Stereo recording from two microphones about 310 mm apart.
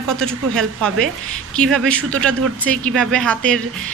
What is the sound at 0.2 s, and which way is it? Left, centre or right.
Speech, centre.